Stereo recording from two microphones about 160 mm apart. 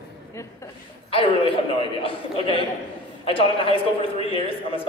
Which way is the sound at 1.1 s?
35° left (ahead or behind).